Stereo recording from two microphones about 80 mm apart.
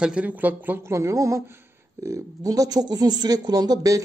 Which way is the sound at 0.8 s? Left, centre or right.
Right.